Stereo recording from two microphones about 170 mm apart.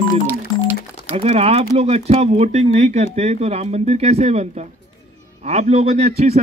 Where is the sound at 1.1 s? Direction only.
35° right (ahead or behind).